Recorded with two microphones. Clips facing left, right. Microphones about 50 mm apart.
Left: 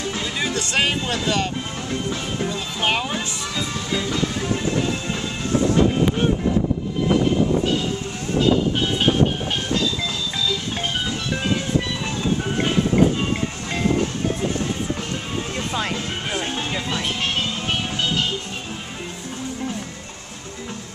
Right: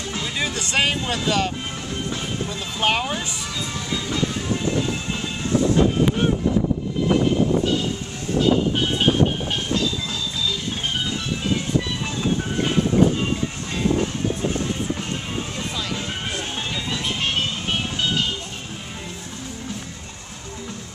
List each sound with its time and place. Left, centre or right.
0.4 s speech: centre
2.8 s speech: centre
15.7 s music: left